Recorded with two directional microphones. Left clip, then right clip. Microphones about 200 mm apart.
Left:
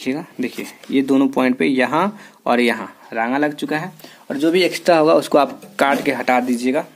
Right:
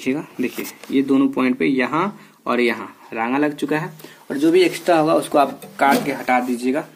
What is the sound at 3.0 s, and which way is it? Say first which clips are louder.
Speech: left 1 dB; 25° left (ahead or behind).